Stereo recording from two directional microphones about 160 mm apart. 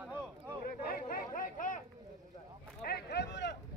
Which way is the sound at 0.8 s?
65° left (ahead or behind).